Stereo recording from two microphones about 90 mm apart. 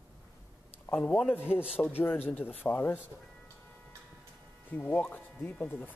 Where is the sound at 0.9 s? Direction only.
10° left (ahead or behind).